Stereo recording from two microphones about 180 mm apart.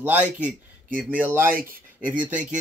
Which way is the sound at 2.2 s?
5° right (ahead or behind).